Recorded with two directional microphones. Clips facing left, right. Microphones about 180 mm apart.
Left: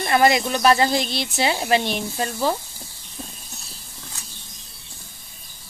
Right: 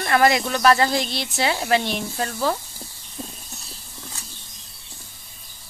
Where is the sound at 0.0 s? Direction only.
20° left (ahead or behind).